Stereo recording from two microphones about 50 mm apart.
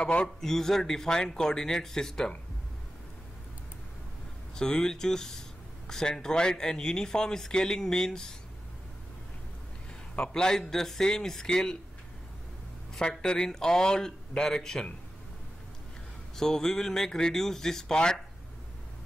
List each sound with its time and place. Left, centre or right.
0.4 s speech: centre
4.6 s speech: centre
10.1 s speech: centre
13.2 s speech: centre
16.3 s speech: centre